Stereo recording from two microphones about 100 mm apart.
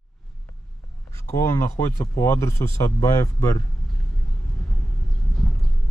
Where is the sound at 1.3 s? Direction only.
30° left (ahead or behind).